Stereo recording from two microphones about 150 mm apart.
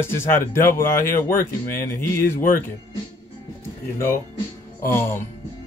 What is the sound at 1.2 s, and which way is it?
Speech, 65° left (ahead or behind).